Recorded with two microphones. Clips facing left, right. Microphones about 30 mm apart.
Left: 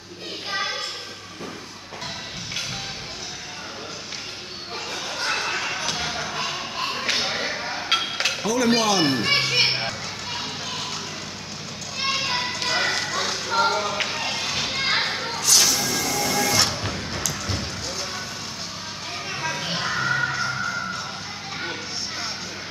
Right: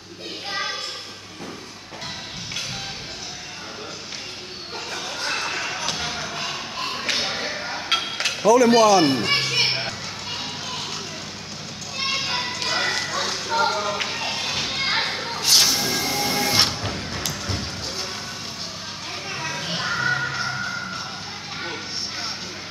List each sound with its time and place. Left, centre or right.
0.5 s child singing: centre
4.9 s basketball bounce: centre
12.1 s clip-clop: centre
15.3 s music: right
16.7 s music: centre
17.3 s a sound: centre
19.3 s children playing: centre
19.8 s music: centre
20.3 s a sound: centre